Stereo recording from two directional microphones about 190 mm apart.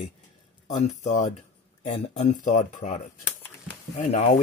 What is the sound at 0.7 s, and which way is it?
Speech, 40° left (ahead or behind).